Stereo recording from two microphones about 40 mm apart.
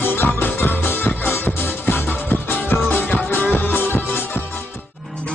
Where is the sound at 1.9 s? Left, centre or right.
Left.